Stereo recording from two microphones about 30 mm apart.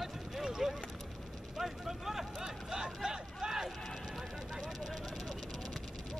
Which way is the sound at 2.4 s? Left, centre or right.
Centre.